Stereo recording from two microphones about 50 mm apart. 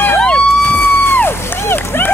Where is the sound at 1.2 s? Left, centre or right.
Left.